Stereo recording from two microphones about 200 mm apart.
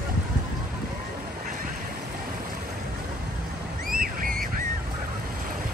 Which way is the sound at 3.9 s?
45° right (ahead or behind).